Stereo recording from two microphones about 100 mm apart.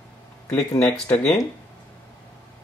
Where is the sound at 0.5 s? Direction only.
30° left (ahead or behind).